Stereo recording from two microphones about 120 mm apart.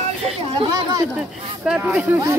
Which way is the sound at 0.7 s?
35° right (ahead or behind).